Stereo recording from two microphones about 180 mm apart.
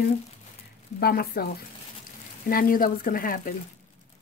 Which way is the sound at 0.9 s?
60° left (ahead or behind).